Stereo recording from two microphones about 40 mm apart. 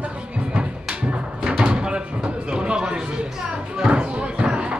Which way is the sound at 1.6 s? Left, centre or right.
Right.